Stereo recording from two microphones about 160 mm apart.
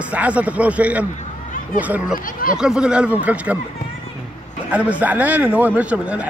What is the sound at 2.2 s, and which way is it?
Speech, 60° left (ahead or behind).